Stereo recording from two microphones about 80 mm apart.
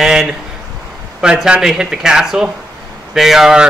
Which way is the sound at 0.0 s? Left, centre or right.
Centre.